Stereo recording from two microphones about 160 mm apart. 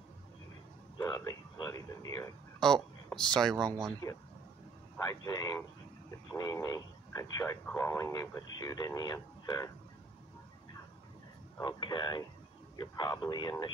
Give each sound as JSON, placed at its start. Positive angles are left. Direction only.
{"t": 0.9, "sound": "speech", "side_deg": 20}
{"t": 2.6, "sound": "speech", "side_deg": 5}
{"t": 4.0, "sound": "speech", "side_deg": 20}
{"t": 11.6, "sound": "speech", "side_deg": 25}